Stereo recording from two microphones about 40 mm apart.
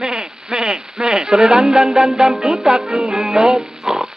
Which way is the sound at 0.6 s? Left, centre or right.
Centre.